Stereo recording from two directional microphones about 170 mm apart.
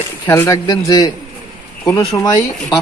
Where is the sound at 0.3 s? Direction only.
20° left (ahead or behind).